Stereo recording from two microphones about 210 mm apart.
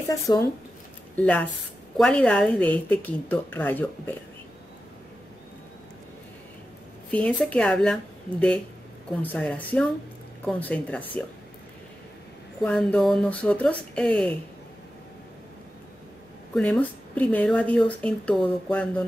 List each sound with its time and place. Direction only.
0.1 s a woman's voice: 15° left (ahead or behind)
7.1 s a woman's voice: 5° left (ahead or behind)
12.6 s speech: 5° left (ahead or behind)
16.5 s a woman's voice: 5° left (ahead or behind)